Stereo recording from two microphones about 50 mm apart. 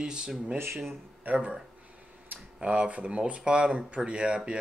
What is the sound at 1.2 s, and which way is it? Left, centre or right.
Speech, right.